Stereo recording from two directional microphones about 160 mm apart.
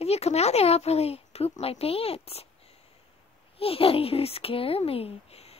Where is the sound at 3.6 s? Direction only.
35° left (ahead or behind).